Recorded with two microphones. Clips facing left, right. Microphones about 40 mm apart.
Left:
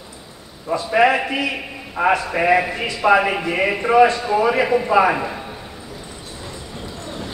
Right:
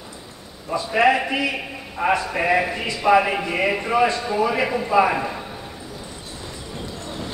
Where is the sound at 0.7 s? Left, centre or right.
Left.